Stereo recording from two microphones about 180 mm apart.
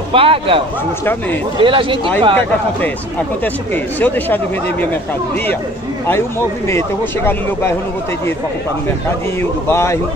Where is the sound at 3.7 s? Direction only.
10° left (ahead or behind).